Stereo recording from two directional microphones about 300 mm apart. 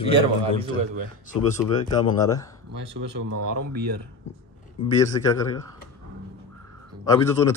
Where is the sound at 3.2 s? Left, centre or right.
Right.